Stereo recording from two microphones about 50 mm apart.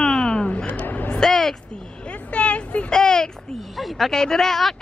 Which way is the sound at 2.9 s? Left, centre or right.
Centre.